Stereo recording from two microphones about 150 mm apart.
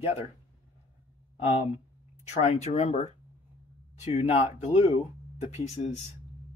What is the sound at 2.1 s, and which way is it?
Speech, 50° left (ahead or behind).